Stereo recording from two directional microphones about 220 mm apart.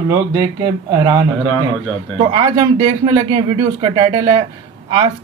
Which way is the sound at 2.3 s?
25° right (ahead or behind).